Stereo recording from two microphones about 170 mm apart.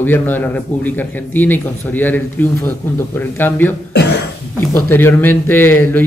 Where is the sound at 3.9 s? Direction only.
85° left.